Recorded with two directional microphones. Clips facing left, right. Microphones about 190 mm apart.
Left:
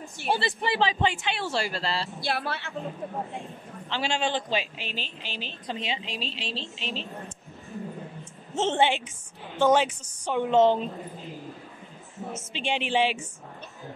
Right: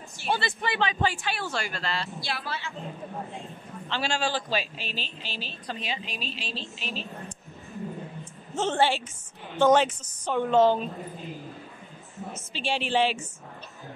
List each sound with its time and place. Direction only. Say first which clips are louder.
0.3 s a man's voice: left 2 dB; 30° left (ahead or behind)
1.5 s speech: left 3 dB; 30° left (ahead or behind)
2.1 s speech: left 4 dB; 55° left (ahead or behind)
3.9 s a man's voice: left 1 dB; 20° left (ahead or behind)
8.5 s a man's voice: left 1 dB; 20° left (ahead or behind)
12.5 s a woman's voice: even; 20° left (ahead or behind)